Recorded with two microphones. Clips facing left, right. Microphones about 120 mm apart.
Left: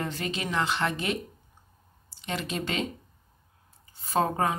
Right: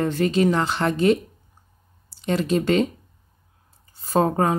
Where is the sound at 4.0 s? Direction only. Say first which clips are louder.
Right 6 dB; 40° right (ahead or behind).